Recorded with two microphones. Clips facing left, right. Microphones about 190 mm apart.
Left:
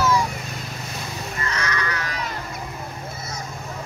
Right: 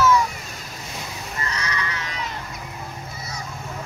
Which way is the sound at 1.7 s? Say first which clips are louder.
Left 2 dB; 25° right (ahead or behind).